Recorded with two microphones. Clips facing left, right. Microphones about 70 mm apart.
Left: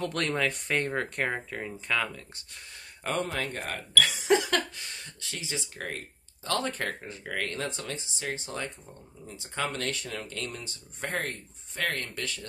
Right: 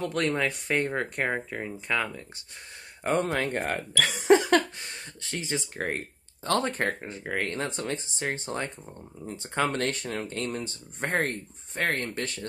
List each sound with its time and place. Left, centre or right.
0.0 s speech: centre
3.0 s speech: right
3.3 s speech: right